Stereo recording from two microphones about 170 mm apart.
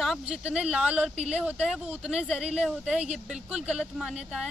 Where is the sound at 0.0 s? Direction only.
Centre (ahead or behind).